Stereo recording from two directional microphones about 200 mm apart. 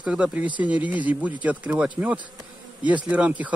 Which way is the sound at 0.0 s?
5° right (ahead or behind).